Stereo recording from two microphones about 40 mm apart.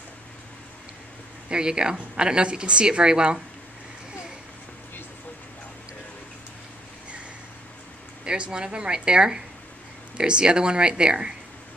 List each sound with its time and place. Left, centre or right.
1.5 s a woman's voice: right
8.3 s a woman's voice: right